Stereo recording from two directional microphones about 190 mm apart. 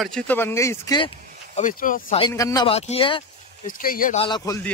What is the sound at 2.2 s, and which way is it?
Speech, 15° left (ahead or behind).